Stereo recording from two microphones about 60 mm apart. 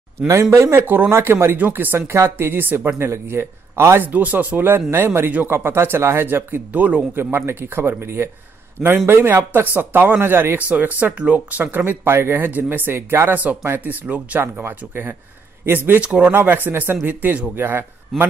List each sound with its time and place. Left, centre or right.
0.3 s a man's voice: right
2.0 s speech: right
4.0 s a man's voice: right
7.2 s a man's voice: right
10.7 s a man's voice: right
13.7 s speech: right
14.4 s a man's voice: right
16.0 s a man's voice: right